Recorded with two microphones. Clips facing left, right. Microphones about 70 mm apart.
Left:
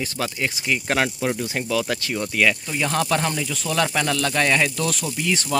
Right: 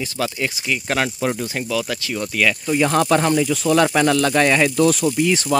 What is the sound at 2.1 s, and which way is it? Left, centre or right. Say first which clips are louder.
Speech: right 1 dB; centre.